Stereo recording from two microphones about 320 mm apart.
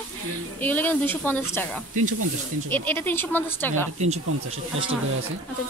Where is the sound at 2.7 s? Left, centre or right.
Centre.